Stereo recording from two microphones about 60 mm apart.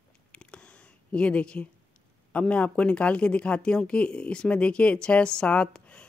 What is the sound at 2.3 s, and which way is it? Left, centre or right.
Speech, left.